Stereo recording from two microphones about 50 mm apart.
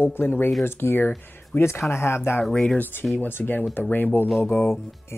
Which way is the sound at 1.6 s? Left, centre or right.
Left.